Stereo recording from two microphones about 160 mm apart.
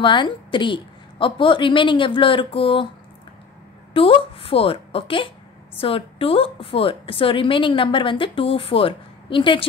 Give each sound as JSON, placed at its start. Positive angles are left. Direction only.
{"t": 0.0, "sound": "a woman's voice", "side_deg": 30}
{"t": 3.9, "sound": "a woman's voice", "side_deg": 35}